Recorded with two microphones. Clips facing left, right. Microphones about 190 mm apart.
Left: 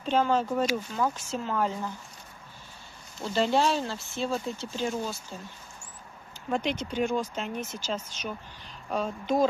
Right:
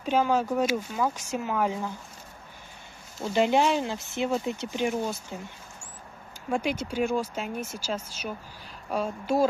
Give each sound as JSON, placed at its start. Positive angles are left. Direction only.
{"t": 0.0, "sound": "speech", "side_deg": -10}
{"t": 3.3, "sound": "speech", "side_deg": -15}
{"t": 6.5, "sound": "speech", "side_deg": -10}